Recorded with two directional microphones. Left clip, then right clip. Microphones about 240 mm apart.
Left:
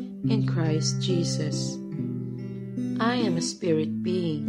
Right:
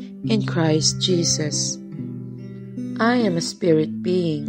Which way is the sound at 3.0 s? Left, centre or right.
Right.